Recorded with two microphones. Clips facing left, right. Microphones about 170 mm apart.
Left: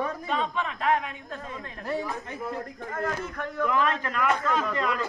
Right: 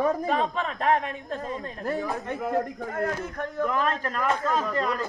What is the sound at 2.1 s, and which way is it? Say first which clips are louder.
Speech: right 6 dB; 65° right (ahead or behind).